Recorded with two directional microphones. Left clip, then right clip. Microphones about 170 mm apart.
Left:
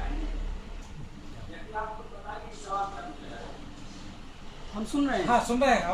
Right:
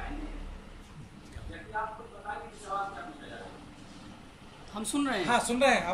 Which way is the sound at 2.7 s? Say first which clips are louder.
Left 3 dB; 30° right (ahead or behind).